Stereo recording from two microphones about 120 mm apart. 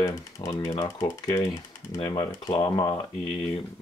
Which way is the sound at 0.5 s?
40° left (ahead or behind).